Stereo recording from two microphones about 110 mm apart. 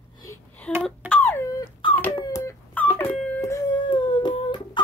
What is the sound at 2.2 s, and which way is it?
Baby cry, 30° left (ahead or behind).